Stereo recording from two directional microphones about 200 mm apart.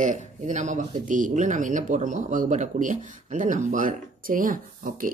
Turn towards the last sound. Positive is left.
turn(degrees=-45)  # may be behind; listen again after turning